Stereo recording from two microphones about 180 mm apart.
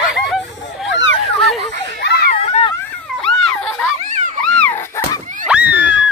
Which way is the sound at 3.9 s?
40° right (ahead or behind).